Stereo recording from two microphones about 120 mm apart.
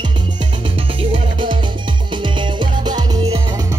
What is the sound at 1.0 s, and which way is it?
Music, 45° right (ahead or behind).